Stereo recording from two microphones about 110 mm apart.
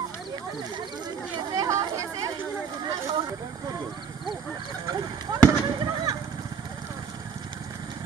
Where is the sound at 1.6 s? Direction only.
30° right (ahead or behind).